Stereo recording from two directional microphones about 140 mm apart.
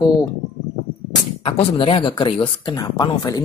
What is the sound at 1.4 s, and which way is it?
Speech, 40° left (ahead or behind).